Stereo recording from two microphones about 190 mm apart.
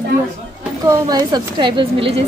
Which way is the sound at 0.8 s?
20° right (ahead or behind).